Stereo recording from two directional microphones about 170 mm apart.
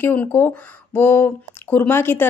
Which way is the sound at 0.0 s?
10° left (ahead or behind).